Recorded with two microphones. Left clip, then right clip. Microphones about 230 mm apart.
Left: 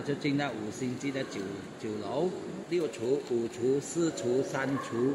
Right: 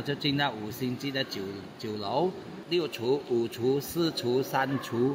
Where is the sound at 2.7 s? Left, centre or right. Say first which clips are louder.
Right 2 dB; right.